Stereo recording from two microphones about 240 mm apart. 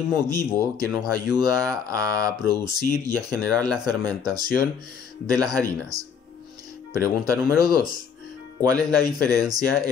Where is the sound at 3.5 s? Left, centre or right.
Centre.